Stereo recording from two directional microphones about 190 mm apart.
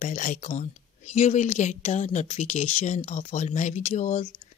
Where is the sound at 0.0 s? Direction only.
40° left (ahead or behind).